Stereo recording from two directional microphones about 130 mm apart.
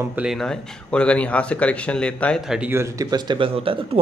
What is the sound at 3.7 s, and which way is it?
Speech, 45° right (ahead or behind).